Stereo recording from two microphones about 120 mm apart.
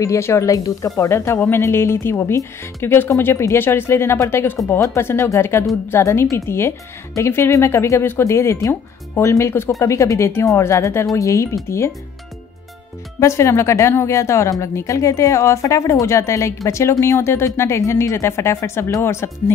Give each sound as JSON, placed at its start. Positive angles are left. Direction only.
{"t": 0.0, "sound": "speech", "side_deg": 25}
{"t": 13.2, "sound": "speech", "side_deg": 25}